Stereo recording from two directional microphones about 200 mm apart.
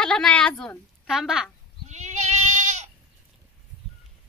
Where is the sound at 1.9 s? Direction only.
35° right (ahead or behind).